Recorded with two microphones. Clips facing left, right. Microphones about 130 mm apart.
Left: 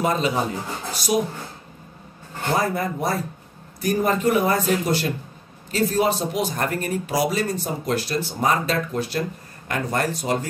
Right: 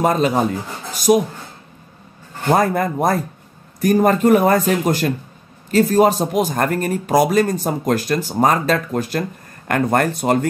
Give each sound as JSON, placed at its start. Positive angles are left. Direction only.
{"t": 0.0, "sound": "speech", "side_deg": -45}
{"t": 2.5, "sound": "speech", "side_deg": -50}
{"t": 9.7, "sound": "speech", "side_deg": -60}